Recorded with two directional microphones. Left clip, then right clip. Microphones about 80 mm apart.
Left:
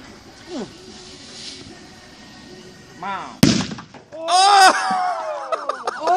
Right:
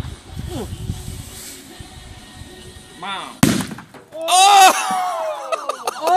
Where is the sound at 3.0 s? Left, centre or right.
Centre.